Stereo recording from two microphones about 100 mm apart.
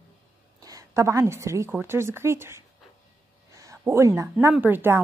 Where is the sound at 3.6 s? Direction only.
30° right (ahead or behind).